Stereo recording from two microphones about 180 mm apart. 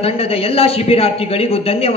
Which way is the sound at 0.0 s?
35° left (ahead or behind).